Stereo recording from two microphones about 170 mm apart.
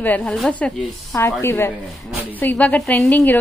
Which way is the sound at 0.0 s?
10° left (ahead or behind).